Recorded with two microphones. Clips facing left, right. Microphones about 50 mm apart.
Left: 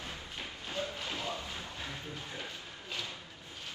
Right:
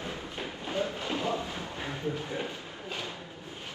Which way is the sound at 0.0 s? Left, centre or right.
Right.